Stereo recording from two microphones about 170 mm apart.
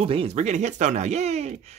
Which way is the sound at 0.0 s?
35° right (ahead or behind).